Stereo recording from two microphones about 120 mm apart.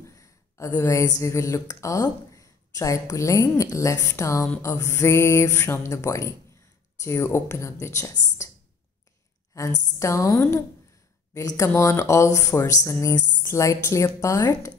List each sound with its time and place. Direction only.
0.1 s speech: 25° left (ahead or behind)
9.5 s a woman's voice: 30° left (ahead or behind)